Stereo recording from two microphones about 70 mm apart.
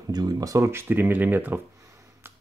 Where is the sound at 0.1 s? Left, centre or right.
Right.